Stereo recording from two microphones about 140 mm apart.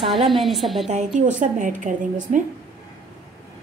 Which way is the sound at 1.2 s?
65° right (ahead or behind).